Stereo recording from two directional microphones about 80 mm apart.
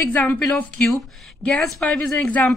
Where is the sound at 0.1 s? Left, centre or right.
Centre.